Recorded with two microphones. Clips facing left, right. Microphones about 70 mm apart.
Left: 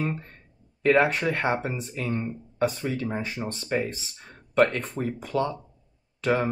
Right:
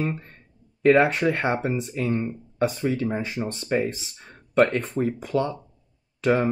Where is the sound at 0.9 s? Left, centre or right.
Right.